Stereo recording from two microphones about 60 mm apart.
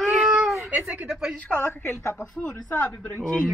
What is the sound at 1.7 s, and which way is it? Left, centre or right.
Speech, left.